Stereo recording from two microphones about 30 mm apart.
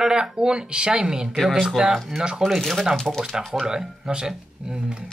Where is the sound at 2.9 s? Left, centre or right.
Centre.